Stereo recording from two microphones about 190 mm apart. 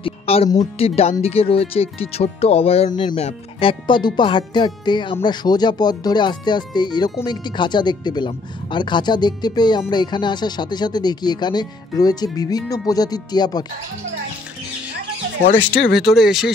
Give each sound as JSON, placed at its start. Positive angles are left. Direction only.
{"t": 0.0, "sound": "speech", "side_deg": 30}
{"t": 15.5, "sound": "speech", "side_deg": 60}
{"t": 16.0, "sound": "speech", "side_deg": 0}